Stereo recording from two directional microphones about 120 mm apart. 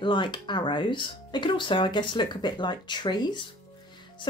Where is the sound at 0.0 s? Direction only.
45° left (ahead or behind).